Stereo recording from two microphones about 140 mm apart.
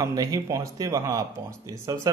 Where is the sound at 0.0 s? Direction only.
25° right (ahead or behind).